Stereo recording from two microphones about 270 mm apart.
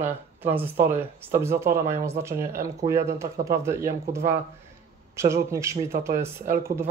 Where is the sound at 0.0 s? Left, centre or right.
Centre.